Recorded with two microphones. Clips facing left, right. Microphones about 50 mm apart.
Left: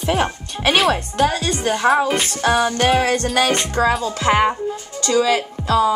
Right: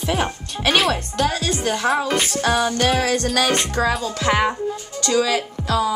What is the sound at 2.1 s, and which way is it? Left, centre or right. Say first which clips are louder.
Music: right 1 dB; centre.